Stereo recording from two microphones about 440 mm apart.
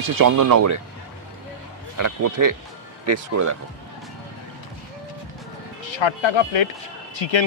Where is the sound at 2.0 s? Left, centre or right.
Right.